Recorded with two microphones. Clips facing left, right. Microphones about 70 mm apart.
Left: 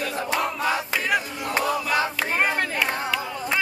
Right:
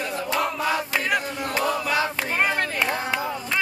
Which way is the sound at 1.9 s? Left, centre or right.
Left.